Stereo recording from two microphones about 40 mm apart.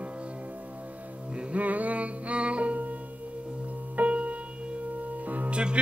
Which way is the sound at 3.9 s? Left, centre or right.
Right.